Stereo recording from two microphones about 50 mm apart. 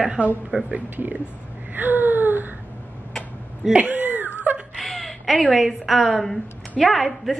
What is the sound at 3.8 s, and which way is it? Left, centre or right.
Cat, right.